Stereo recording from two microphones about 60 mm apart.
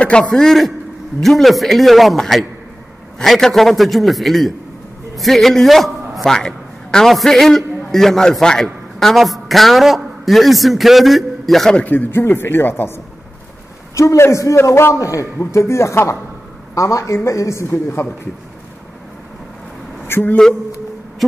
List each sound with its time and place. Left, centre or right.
0.0 s a man's voice: centre
11.7 s a man's voice: left
13.9 s speech: left
15.0 s speech: left
16.7 s a man's voice: left
20.1 s a woman's voice: left
21.2 s owl: centre